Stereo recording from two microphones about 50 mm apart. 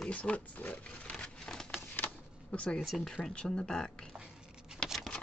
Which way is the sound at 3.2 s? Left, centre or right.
Centre.